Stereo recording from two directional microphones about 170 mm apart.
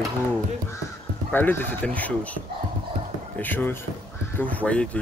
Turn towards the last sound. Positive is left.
turn(degrees=10)  # may be behind; listen again after turning